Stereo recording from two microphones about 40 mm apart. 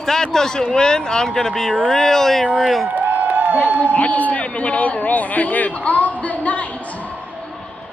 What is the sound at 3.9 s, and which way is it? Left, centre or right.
A man's voice, left.